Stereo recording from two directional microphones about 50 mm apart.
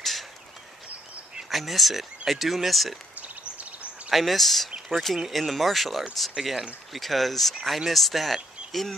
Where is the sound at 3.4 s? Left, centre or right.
Right.